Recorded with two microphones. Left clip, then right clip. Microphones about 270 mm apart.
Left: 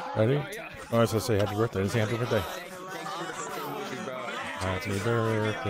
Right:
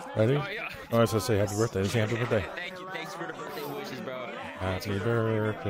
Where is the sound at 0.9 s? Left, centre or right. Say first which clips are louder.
Even; centre.